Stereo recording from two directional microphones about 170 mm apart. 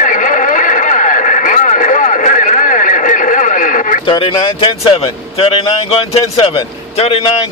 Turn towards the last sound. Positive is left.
turn(degrees=35)  # may be behind; listen again after turning